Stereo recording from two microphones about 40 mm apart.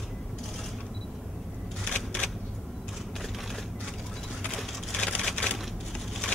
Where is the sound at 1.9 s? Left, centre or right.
Left.